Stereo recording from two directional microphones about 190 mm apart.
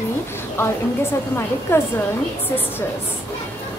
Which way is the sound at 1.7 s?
10° left (ahead or behind).